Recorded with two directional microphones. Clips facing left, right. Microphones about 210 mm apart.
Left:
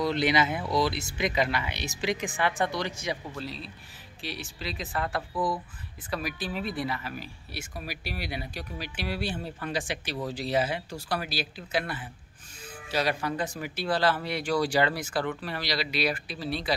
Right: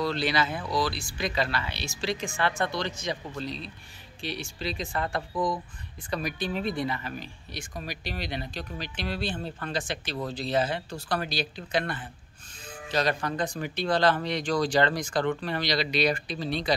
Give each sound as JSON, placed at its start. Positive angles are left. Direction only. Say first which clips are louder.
{"t": 0.0, "sound": "speech", "louder": "left 2 dB", "side_deg": 20}